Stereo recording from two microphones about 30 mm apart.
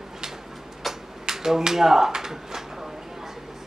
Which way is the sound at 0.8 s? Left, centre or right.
Centre.